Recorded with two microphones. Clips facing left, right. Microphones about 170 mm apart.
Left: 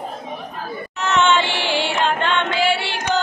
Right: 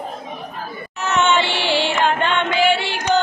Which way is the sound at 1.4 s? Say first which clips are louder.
Right 2 dB; 15° left (ahead or behind).